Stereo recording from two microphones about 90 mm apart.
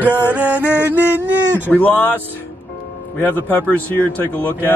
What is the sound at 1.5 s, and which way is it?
Speech, 15° left (ahead or behind).